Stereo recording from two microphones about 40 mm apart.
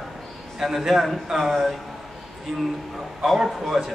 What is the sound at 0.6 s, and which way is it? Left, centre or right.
Speech, centre.